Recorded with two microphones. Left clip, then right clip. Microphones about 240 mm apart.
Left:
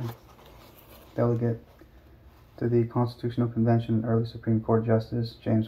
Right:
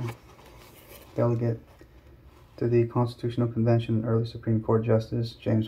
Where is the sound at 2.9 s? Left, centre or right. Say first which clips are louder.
Right 1 dB; right.